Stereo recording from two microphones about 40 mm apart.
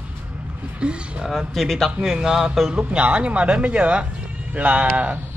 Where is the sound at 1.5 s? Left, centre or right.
Centre.